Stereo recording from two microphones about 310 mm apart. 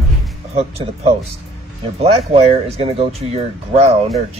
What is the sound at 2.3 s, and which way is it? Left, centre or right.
Speech, centre.